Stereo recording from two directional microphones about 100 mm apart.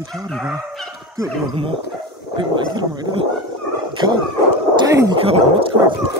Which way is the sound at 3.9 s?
50° right (ahead or behind).